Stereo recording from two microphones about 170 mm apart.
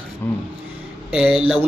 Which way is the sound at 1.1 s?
5° right (ahead or behind).